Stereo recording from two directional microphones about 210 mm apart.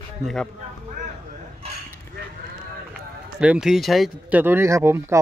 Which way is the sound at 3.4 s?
5° right (ahead or behind).